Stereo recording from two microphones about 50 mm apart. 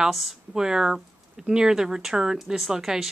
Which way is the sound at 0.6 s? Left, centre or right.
Centre.